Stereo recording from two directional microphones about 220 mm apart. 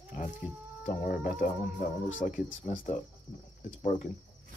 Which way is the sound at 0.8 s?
40° left (ahead or behind).